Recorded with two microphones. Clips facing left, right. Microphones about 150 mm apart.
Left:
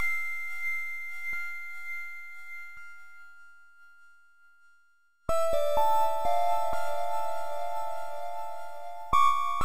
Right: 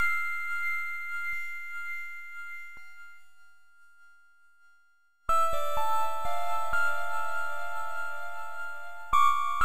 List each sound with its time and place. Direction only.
0.0 s sine wave: 35° left (ahead or behind)
2.7 s ding: 55° right (ahead or behind)
5.2 s music: 35° left (ahead or behind)